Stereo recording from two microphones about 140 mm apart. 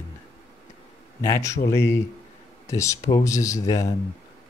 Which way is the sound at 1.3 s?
25° left (ahead or behind).